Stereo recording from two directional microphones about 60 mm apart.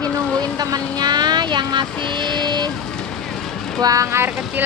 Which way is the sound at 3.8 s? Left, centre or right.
Right.